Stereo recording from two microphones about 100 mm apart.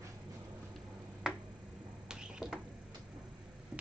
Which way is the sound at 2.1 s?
5° right (ahead or behind).